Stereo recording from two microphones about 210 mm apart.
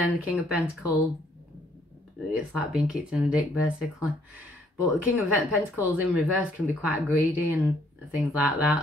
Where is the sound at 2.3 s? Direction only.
Centre (ahead or behind).